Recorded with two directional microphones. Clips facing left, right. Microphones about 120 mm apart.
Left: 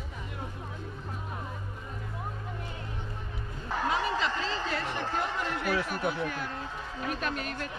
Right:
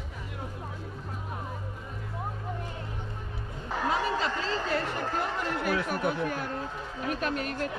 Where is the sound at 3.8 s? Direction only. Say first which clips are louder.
Right 1 dB; 45° right (ahead or behind).